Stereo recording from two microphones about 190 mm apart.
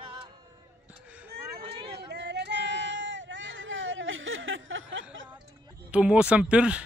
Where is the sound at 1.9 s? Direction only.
60° right (ahead or behind); by 5.3 s 80° right.